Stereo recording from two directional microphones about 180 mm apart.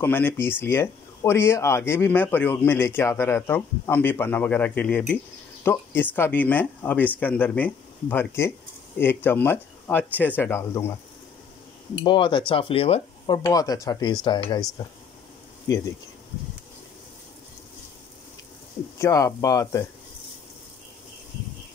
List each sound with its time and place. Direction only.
0.0 s speech: 10° left (ahead or behind)
12.0 s cutlery: 25° left (ahead or behind)
13.4 s cutlery: 20° left (ahead or behind)
18.9 s speech: 20° left (ahead or behind)